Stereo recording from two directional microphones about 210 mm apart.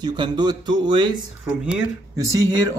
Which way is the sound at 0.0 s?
20° right (ahead or behind).